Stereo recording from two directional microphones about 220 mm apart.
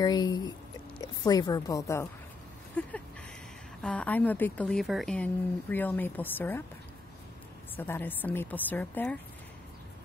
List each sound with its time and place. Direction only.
0.0 s speech: 20° left (ahead or behind)
2.8 s a sound: 5° left (ahead or behind)
3.8 s speech: 5° left (ahead or behind)
7.7 s speech: 10° left (ahead or behind)